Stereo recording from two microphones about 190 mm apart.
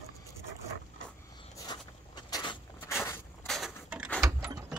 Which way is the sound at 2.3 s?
20° left (ahead or behind).